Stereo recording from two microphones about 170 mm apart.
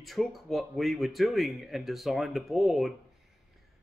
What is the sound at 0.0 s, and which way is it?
Speech, centre (ahead or behind).